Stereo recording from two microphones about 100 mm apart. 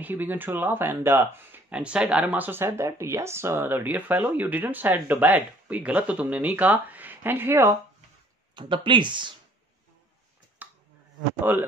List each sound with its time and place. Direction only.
0.0 s speech: 20° right (ahead or behind)
1.7 s speech: 10° right (ahead or behind)
8.5 s speech: 55° right (ahead or behind)
11.5 s speech: 20° right (ahead or behind)